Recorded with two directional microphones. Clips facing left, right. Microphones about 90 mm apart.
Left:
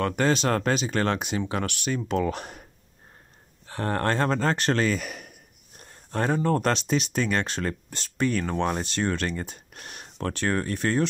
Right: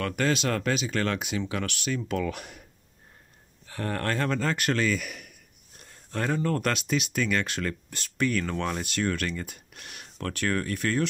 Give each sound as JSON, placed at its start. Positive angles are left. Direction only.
{"t": 0.0, "sound": "speech", "side_deg": 25}
{"t": 3.6, "sound": "speech", "side_deg": 35}